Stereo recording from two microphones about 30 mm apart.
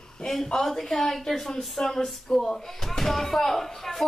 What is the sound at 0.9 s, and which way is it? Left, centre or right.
A woman's voice, centre.